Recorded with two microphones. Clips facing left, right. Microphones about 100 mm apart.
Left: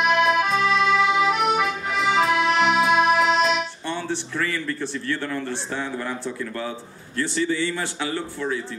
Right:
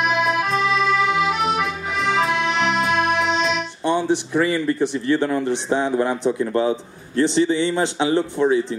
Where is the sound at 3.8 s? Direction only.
15° right (ahead or behind).